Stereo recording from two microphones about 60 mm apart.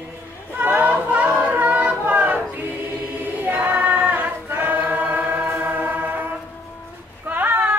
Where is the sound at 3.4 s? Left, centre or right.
Right.